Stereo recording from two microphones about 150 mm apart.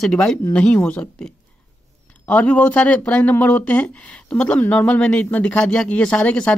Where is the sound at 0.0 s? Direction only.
Centre (ahead or behind).